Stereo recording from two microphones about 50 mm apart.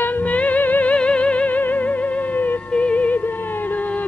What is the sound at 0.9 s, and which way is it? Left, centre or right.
Music, left.